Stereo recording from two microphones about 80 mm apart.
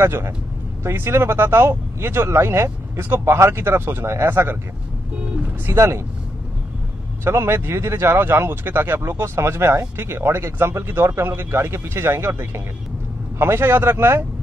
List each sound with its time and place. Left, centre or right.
0.0 s speech: right
5.7 s speech: right
7.2 s speech: right